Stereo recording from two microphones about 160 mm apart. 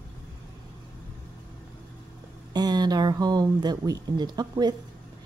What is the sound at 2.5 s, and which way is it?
Speech, 25° right (ahead or behind).